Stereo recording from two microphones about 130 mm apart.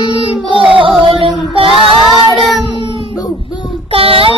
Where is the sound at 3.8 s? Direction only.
45° right (ahead or behind).